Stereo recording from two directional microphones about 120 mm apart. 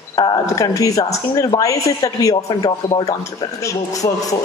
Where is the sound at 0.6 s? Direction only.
30° left (ahead or behind).